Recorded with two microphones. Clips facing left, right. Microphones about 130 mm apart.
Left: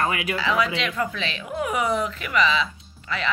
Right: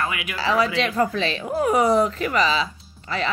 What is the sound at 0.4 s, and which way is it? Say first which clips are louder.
Speech: right 5 dB; 35° right (ahead or behind).